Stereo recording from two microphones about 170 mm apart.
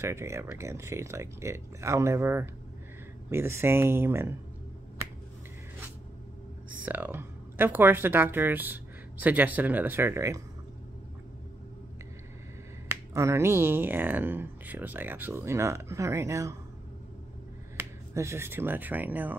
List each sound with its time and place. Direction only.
0.0 s speech: 15° right (ahead or behind)
6.8 s speech: 10° right (ahead or behind)
12.8 s speech: 15° right (ahead or behind)
17.7 s speech: 15° right (ahead or behind)